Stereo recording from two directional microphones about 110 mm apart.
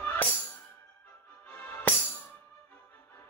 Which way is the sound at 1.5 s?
15° left (ahead or behind).